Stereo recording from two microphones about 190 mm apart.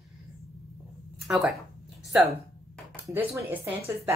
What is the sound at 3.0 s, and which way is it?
Speech, 10° right (ahead or behind).